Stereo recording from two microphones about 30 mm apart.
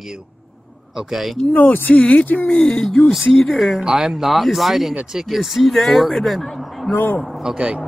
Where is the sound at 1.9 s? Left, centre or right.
Left.